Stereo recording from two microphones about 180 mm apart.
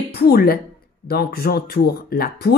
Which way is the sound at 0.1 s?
60° left (ahead or behind).